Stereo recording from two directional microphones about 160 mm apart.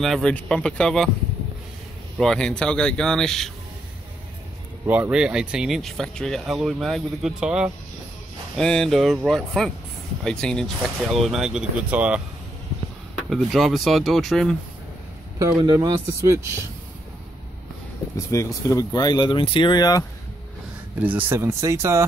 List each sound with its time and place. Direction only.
0.0 s speech: 5° left (ahead or behind)
2.1 s speech: 5° left (ahead or behind)
4.8 s speech: 10° right (ahead or behind)
13.3 s speech: centre (ahead or behind)
15.3 s speech: 20° right (ahead or behind)
18.1 s speech: 20° left (ahead or behind)
21.0 s speech: 10° right (ahead or behind)